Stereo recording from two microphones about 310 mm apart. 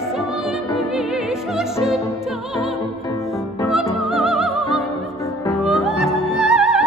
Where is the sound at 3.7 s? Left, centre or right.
Centre.